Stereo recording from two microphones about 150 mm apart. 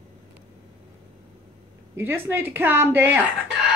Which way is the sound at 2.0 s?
15° right (ahead or behind).